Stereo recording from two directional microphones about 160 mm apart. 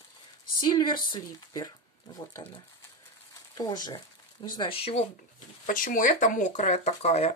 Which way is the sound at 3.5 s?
25° left (ahead or behind).